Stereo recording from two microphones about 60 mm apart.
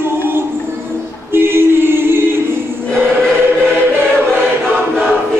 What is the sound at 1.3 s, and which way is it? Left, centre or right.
Singing, right.